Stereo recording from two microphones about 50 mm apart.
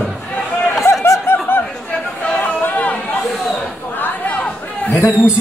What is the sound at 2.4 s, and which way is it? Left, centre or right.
Chatter, left.